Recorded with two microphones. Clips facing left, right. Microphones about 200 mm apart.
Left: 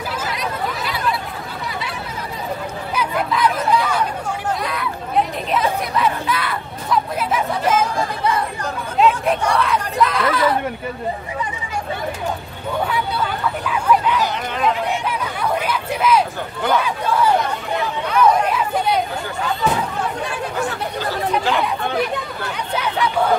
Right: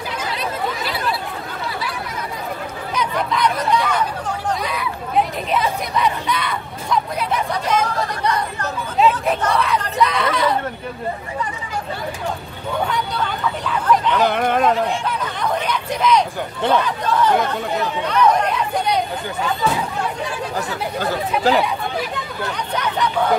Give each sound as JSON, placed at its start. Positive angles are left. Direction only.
{"t": 3.0, "sound": "chatter", "side_deg": 5}
{"t": 9.5, "sound": "a sound", "side_deg": 0}
{"t": 12.8, "sound": "speech", "side_deg": 5}
{"t": 14.1, "sound": "speech", "side_deg": -55}
{"t": 15.0, "sound": "speech", "side_deg": 10}
{"t": 18.1, "sound": "chatter", "side_deg": 5}
{"t": 21.5, "sound": "speech", "side_deg": -40}